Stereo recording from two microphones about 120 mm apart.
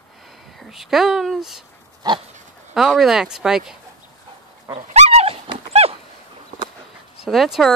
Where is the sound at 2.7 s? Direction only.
5° right (ahead or behind).